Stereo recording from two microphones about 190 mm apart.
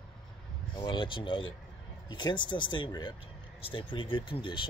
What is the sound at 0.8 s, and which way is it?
Speech, 25° left (ahead or behind).